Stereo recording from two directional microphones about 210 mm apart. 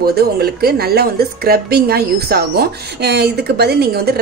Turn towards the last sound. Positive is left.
turn(degrees=-50)  # may be behind; listen again after turning